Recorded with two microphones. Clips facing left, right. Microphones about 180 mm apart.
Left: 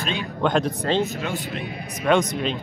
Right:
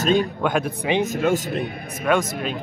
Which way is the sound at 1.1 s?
50° right (ahead or behind).